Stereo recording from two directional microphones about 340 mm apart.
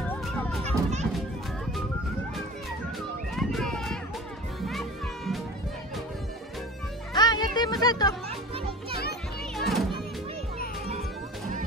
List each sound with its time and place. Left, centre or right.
0.7 s music: centre
3.3 s run: centre
4.6 s music: centre
7.2 s music: centre
9.6 s music: centre